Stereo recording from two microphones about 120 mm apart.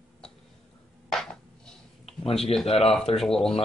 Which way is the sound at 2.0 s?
60° left (ahead or behind).